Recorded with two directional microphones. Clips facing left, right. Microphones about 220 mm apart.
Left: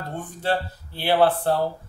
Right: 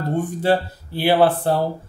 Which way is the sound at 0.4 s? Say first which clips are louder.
Right 3 dB; 10° right (ahead or behind).